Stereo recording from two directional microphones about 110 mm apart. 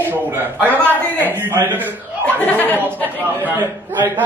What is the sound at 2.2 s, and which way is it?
Speech, 15° left (ahead or behind).